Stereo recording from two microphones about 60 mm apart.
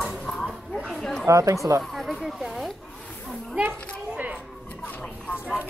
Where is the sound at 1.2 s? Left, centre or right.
Right.